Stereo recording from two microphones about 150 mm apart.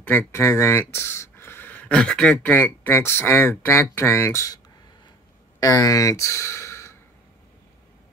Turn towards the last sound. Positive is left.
turn(degrees=20)  # may be behind; listen again after turning